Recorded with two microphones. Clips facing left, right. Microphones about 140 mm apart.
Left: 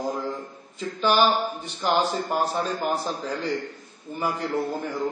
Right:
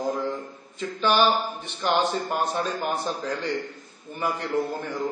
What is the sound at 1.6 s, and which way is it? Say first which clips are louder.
Speech: even; 10° left (ahead or behind).